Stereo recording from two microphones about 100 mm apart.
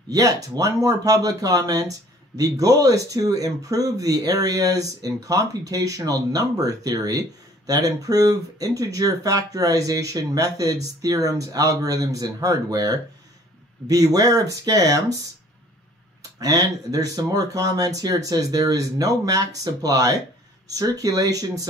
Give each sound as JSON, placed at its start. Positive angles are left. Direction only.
{"t": 0.1, "sound": "speech", "side_deg": -35}
{"t": 16.2, "sound": "speech", "side_deg": -35}